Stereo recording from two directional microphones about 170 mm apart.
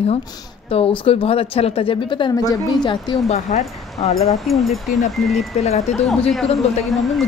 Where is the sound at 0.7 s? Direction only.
35° left (ahead or behind).